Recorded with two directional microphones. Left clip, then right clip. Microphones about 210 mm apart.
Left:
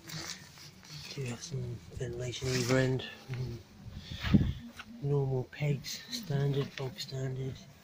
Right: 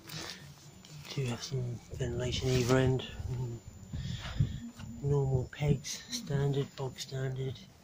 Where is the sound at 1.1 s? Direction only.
20° right (ahead or behind).